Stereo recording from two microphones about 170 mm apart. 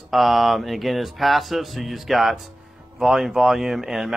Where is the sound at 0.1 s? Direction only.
Centre (ahead or behind).